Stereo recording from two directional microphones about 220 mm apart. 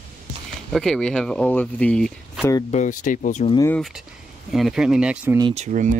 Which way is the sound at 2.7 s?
35° left (ahead or behind).